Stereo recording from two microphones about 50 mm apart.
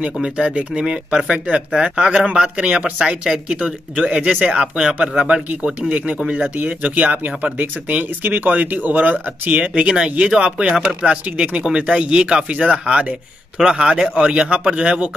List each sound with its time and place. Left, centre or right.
0.0 s speech: right
4.6 s a man's voice: centre
9.8 s a man's voice: centre